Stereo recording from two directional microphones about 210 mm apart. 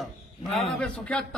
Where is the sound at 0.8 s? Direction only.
5° left (ahead or behind).